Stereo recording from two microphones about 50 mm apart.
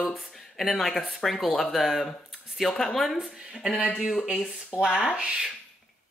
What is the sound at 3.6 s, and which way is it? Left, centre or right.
Speech, centre.